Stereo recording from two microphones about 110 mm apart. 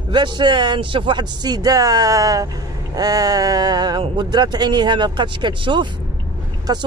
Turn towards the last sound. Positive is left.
turn(degrees=-35)  # may be behind; listen again after turning